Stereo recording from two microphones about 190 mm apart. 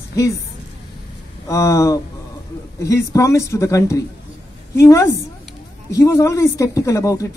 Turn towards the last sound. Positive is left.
turn(degrees=15)  # may be behind; listen again after turning